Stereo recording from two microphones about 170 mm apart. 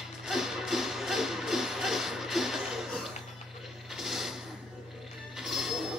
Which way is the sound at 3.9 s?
Centre (ahead or behind).